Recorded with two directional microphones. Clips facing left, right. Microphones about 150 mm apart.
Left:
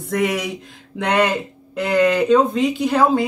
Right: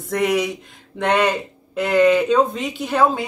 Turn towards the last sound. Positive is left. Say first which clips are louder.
# left 2 dB
turn(degrees=0)  # may be behind; listen again after turning